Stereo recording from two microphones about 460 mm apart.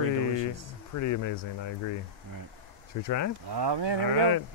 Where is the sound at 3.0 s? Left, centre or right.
Left.